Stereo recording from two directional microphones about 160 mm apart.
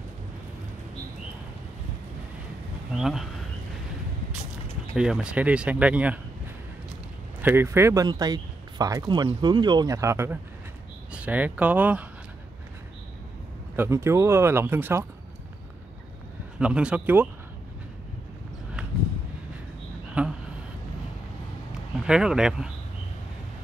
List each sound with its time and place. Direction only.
3.0 s speech: centre (ahead or behind)
4.9 s speech: 5° right (ahead or behind)
7.4 s speech: 15° right (ahead or behind)
13.7 s speech: 15° right (ahead or behind)
16.5 s speech: 5° right (ahead or behind)
20.2 s a sound: 10° right (ahead or behind)
22.0 s speech: 5° right (ahead or behind)